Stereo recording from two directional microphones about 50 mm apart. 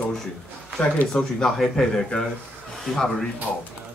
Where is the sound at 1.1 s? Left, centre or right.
Centre.